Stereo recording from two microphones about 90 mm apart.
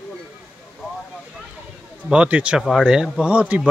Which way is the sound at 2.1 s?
15° right (ahead or behind).